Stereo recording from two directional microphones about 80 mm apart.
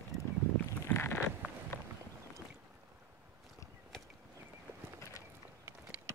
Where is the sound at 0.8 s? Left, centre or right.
Left.